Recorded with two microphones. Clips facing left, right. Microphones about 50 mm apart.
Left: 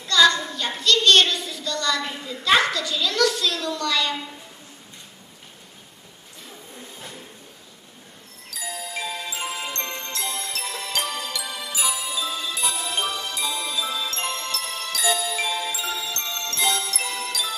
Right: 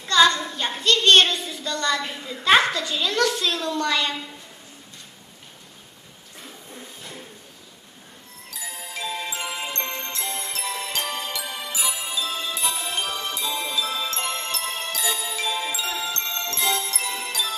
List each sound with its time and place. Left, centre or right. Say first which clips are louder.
0.0 s a sound: even; right
2.2 s a child's voice: right 2 dB; right
8.5 s music: left 3 dB; right
13.5 s jingle: right 1 dB; right
13.8 s music: right 1 dB; right
14.3 s jingle bell: right 1 dB; right
15.5 s music: even; right